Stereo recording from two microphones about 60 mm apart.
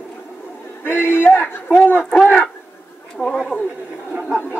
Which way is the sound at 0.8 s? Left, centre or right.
Left.